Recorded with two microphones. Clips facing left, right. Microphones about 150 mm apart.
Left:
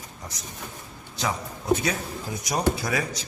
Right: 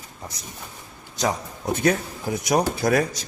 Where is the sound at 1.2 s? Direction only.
45° right (ahead or behind).